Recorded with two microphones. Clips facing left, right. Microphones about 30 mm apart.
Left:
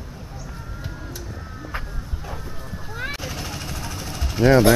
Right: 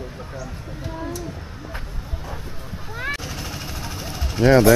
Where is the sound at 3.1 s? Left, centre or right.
Centre.